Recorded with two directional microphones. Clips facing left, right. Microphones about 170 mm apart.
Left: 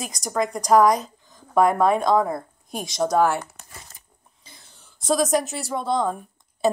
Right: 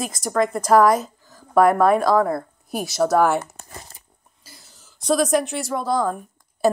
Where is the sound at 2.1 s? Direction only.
15° left (ahead or behind).